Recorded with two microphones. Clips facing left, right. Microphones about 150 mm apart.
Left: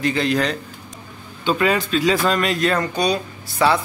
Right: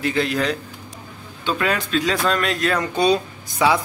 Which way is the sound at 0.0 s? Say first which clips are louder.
Left 1 dB; centre (ahead or behind).